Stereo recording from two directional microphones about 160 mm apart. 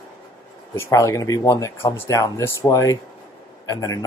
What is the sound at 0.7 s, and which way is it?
Speech, 20° left (ahead or behind).